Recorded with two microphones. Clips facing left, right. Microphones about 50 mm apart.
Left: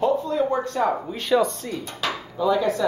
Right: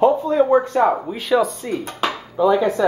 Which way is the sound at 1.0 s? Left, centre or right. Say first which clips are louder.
Right 2 dB; centre.